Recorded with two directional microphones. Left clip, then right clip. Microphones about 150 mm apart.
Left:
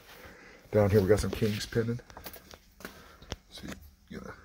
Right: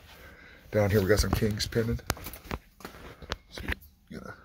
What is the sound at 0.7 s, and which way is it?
Speech, 5° left (ahead or behind).